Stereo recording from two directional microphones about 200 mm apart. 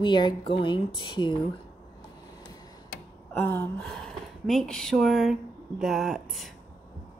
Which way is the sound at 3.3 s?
10° left (ahead or behind).